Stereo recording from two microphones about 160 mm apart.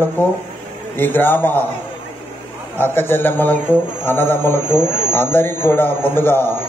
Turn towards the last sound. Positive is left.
turn(degrees=15)  # may be behind; listen again after turning